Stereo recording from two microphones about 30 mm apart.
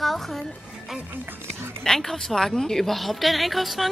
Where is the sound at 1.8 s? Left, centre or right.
Centre.